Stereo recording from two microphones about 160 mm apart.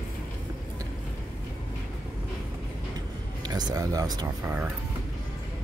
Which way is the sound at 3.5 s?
25° right (ahead or behind).